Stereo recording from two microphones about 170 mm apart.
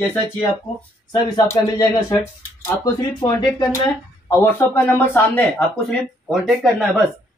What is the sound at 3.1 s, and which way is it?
Speech, 25° left (ahead or behind).